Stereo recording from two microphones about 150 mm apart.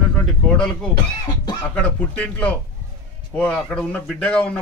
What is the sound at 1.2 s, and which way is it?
Music, 25° left (ahead or behind).